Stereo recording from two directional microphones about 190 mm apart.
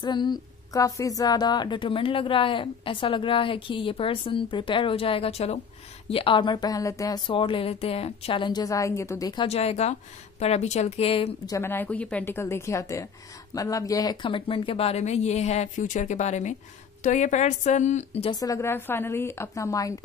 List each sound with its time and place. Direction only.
0.0 s a woman's voice: 25° left (ahead or behind)
11.4 s a woman's voice: 15° left (ahead or behind); by 18.4 s 30° left (ahead or behind)
18.4 s a woman's voice: 15° left (ahead or behind)